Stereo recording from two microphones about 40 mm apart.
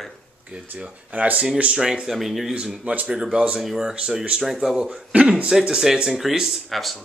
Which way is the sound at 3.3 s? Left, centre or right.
Right.